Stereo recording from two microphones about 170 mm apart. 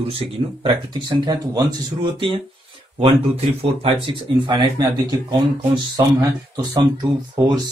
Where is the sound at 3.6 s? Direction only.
30° right (ahead or behind).